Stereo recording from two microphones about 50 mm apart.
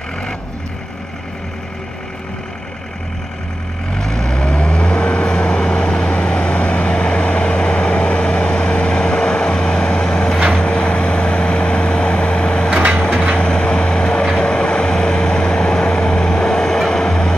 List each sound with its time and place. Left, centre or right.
4.0 s vehicle: centre